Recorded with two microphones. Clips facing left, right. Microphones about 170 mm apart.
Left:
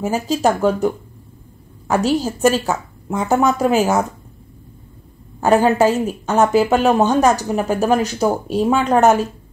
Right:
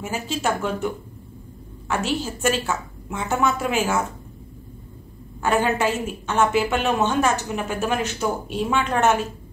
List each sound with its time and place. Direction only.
0.0 s speech: 40° left (ahead or behind)
5.4 s speech: 40° left (ahead or behind)